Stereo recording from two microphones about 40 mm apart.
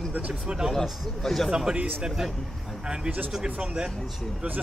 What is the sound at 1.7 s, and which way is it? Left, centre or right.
Speech, right.